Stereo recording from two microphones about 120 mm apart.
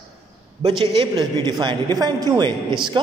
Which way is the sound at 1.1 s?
35° right (ahead or behind).